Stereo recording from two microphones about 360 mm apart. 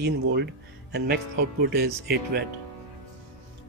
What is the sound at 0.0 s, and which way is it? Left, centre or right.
Speech, right.